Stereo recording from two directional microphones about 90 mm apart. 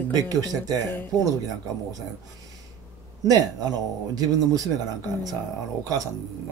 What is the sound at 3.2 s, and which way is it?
Speech, 45° right (ahead or behind).